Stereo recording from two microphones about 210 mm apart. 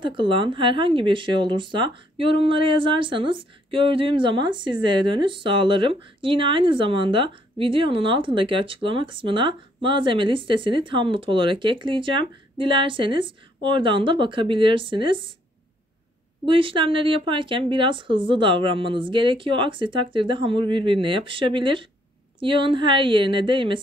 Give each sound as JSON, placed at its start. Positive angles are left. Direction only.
{"t": 0.0, "sound": "speech", "side_deg": -25}
{"t": 16.4, "sound": "speech", "side_deg": -25}